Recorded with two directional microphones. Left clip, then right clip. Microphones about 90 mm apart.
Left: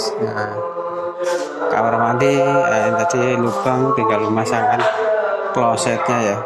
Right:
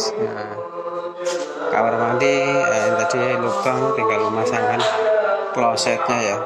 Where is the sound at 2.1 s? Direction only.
50° left (ahead or behind).